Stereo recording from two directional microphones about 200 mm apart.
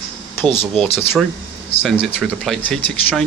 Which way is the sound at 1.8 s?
Centre (ahead or behind).